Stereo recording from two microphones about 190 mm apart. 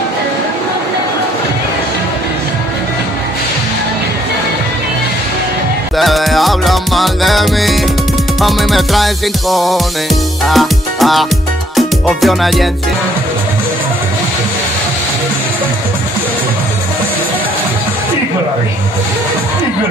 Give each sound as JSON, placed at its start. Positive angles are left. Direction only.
{"t": 5.9, "sound": "music", "side_deg": 0}